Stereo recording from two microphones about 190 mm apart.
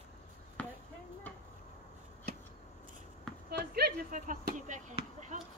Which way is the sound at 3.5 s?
60° right (ahead or behind).